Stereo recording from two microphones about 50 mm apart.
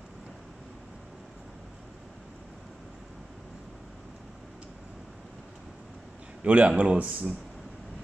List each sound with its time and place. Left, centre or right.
6.4 s speech: right